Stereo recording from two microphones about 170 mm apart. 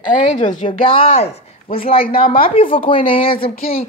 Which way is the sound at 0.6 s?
30° left (ahead or behind).